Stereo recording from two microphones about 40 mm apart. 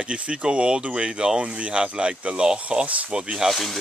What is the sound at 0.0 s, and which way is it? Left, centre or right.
Speech, right.